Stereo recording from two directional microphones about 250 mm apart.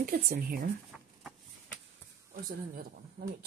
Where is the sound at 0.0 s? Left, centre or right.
Right.